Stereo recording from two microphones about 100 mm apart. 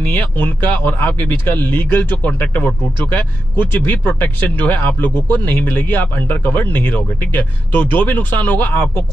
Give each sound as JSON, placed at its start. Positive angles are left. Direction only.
{"t": 0.0, "sound": "speech", "side_deg": 15}
{"t": 3.7, "sound": "speech", "side_deg": 20}